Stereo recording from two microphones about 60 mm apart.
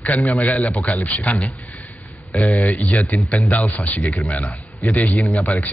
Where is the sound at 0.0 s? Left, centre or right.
Left.